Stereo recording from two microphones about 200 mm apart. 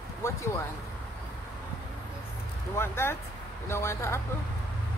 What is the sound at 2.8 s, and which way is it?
Speech, 10° left (ahead or behind).